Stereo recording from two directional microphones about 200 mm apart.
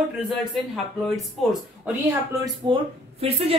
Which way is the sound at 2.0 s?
20° right (ahead or behind).